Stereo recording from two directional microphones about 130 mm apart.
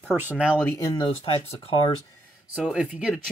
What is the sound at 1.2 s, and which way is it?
Speech, 50° left (ahead or behind).